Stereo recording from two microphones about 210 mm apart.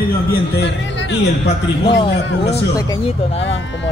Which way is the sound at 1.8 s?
25° left (ahead or behind).